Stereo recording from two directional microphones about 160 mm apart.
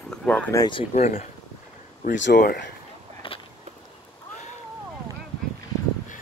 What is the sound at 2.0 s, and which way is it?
Speech, 80° left.